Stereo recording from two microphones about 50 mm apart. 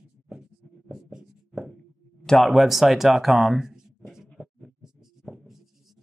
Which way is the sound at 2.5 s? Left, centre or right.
Centre.